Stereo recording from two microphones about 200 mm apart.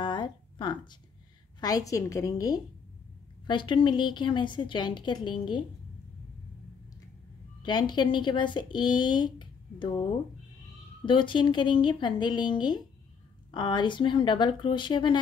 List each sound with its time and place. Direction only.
0.0 s a sound: 25° left (ahead or behind)
1.6 s a woman's voice: 20° left (ahead or behind)
7.6 s speech: 20° left (ahead or behind)
11.1 s speech: 25° left (ahead or behind)